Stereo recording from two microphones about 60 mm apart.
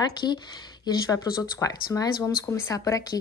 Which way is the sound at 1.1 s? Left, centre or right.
Left.